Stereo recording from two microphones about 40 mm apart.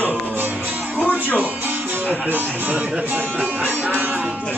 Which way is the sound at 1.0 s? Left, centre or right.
Left.